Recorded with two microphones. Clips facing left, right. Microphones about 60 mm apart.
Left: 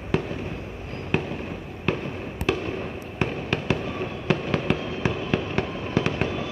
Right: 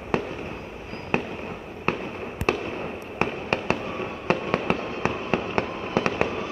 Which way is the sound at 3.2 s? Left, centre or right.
Right.